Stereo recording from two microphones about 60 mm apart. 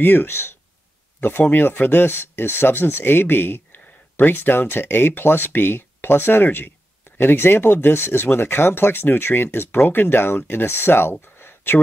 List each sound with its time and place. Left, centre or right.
0.0 s speech: left